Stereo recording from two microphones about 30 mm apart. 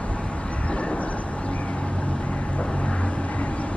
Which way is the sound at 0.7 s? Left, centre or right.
Left.